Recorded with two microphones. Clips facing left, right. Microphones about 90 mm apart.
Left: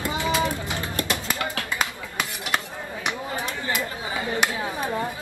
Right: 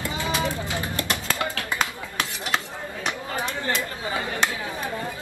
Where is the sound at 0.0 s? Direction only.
20° left (ahead or behind).